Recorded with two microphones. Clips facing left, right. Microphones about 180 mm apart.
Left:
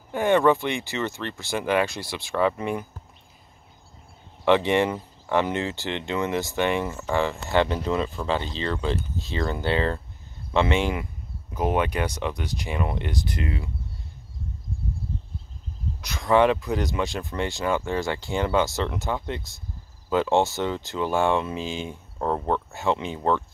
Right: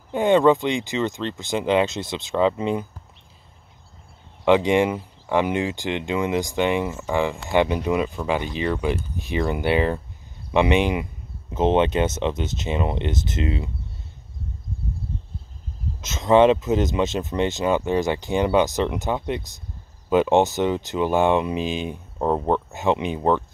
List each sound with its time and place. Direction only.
0.1 s speech: 20° right (ahead or behind)
4.5 s speech: 15° right (ahead or behind)
16.0 s speech: 20° right (ahead or behind)